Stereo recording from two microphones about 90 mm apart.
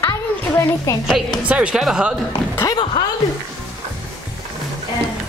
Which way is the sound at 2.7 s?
60° left (ahead or behind).